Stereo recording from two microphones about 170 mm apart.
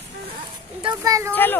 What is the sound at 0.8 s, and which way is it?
Speech, 25° right (ahead or behind).